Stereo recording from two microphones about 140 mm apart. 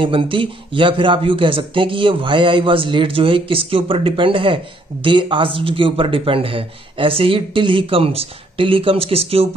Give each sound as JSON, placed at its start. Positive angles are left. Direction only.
{"t": 0.0, "sound": "speech", "side_deg": -40}